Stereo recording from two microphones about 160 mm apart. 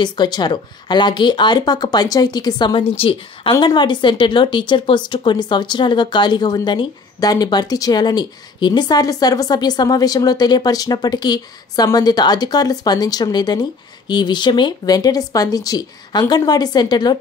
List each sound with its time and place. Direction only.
0.0 s speech: 25° left (ahead or behind)